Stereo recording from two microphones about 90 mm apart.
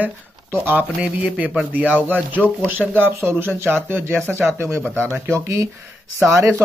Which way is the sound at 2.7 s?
20° right (ahead or behind).